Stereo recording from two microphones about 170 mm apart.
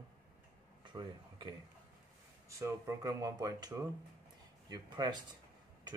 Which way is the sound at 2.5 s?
20° right (ahead or behind).